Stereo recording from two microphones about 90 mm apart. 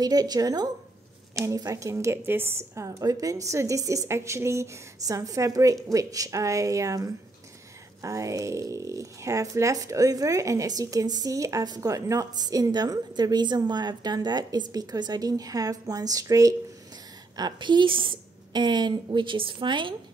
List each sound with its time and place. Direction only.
0.0 s a woman's voice: 45° right (ahead or behind)
17.4 s a woman's voice: 55° right (ahead or behind)